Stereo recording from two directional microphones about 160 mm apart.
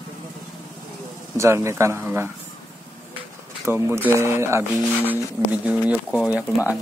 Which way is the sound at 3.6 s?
15° right (ahead or behind).